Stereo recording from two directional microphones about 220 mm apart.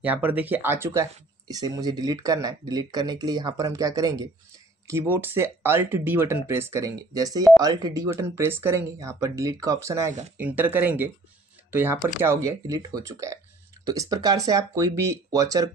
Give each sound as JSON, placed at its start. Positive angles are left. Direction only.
{"t": 0.0, "sound": "speech", "side_deg": -10}